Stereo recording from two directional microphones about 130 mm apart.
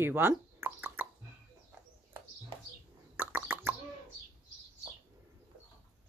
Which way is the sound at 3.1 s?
15° right (ahead or behind).